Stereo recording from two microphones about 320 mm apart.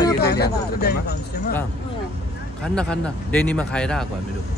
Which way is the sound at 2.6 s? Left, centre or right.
Centre.